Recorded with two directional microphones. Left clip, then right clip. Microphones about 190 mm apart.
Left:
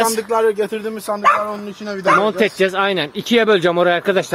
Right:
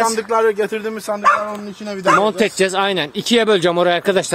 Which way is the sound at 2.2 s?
20° right (ahead or behind).